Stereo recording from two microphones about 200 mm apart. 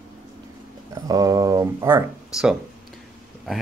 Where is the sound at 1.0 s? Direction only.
15° right (ahead or behind).